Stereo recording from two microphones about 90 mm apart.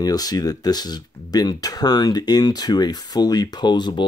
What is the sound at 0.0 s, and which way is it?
Speech, 45° left (ahead or behind).